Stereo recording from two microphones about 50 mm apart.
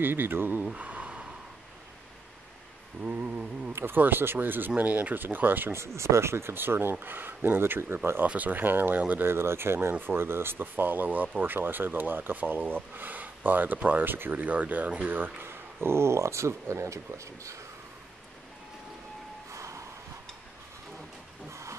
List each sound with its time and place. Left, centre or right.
0.0 s speech: right
0.7 s a sound: right
3.1 s speech: right
3.7 s speech: right
5.9 s speech: right
8.4 s speech: right
9.2 s speech: right
14.3 s speech: right
15.4 s speech: right
19.5 s a sound: right
21.5 s hiss: right